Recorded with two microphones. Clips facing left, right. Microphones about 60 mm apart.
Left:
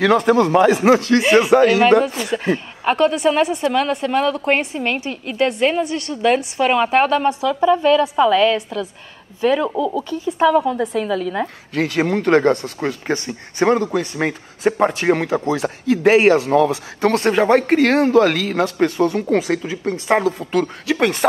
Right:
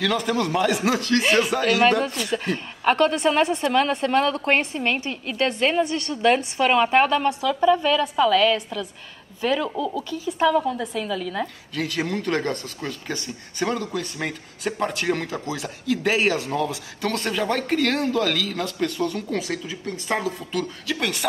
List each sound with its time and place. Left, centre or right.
0.5 s a woman's voice: left
11.7 s speech: left
19.2 s speech: left